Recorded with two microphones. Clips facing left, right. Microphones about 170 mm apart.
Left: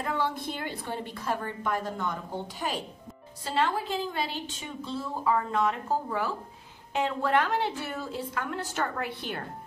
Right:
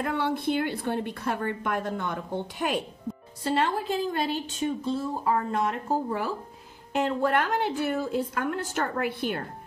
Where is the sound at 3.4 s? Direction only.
45° right (ahead or behind).